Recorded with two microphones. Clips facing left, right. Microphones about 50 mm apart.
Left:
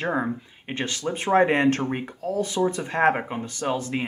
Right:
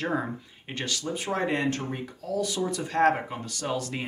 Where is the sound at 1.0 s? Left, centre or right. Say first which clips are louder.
Left 10 dB; left.